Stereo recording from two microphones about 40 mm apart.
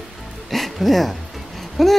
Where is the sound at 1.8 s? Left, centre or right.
Centre.